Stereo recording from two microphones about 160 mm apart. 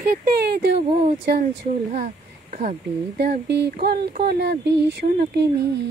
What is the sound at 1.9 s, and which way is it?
Speech, 50° right (ahead or behind).